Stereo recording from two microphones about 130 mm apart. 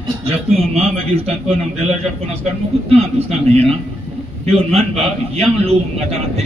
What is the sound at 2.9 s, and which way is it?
Speech, 50° right (ahead or behind).